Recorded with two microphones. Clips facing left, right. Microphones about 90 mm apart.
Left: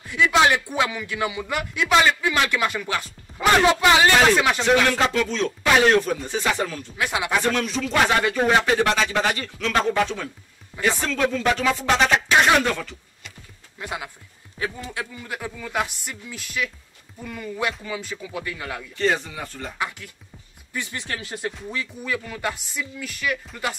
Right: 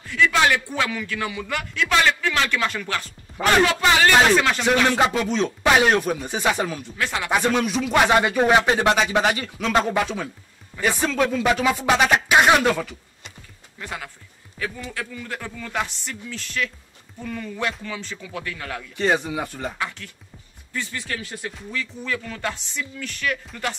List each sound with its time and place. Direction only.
0.0 s a man's voice: 15° left (ahead or behind)
4.8 s speech: 20° right (ahead or behind)
7.0 s a man's voice: 15° left (ahead or behind)
7.2 s speech: 15° right (ahead or behind)
13.7 s a man's voice: 15° left (ahead or behind)
18.9 s speech: 15° right (ahead or behind)
20.7 s a man's voice: 15° left (ahead or behind)